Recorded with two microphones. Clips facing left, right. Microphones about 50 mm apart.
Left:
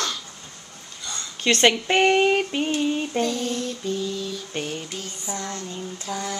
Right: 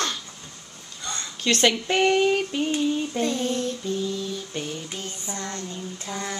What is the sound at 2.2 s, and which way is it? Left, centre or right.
Female singing, left.